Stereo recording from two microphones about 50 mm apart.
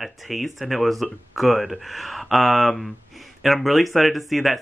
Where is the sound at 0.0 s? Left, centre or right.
Centre.